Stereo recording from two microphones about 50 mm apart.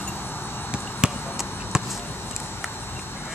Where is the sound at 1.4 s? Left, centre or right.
Left.